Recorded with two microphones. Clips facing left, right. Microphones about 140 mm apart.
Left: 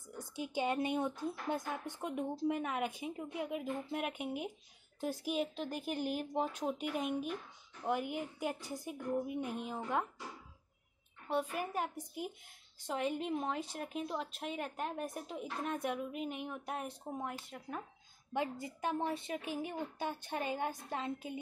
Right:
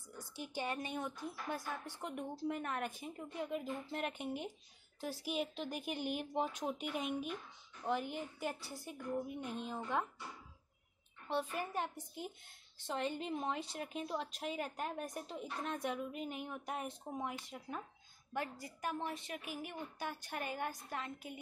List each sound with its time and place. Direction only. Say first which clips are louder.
0.2 s a woman's voice: left 6 dB; 20° left (ahead or behind); by 7.2 s centre (ahead or behind)
7.8 s speech: left 2 dB; 10° left (ahead or behind)
11.5 s a woman's voice: left 2 dB; 5° left (ahead or behind)
18.3 s speech: left 5 dB; 20° left (ahead or behind)